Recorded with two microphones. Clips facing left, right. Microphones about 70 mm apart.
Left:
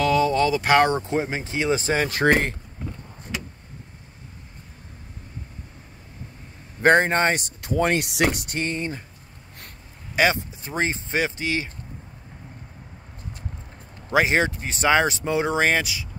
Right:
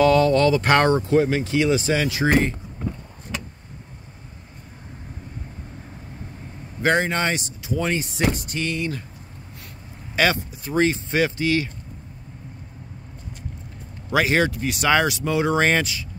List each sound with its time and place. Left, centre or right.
0.0 s speech: centre
0.8 s speech: left
6.8 s speech: left
8.0 s speech: left
8.5 s speech: left
10.1 s speech: centre
14.1 s speech: left
15.6 s speech: centre